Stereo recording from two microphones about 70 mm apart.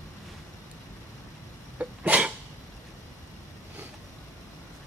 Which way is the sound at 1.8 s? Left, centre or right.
Right.